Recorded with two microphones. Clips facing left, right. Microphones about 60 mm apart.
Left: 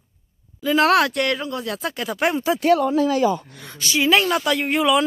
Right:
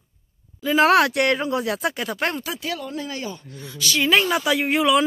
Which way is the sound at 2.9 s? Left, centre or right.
Left.